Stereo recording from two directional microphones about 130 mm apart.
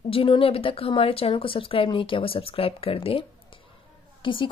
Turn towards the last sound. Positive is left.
turn(degrees=40)  # may be behind; listen again after turning